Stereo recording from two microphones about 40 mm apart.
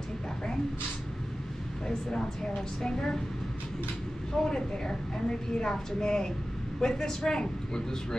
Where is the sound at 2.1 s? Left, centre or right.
Centre.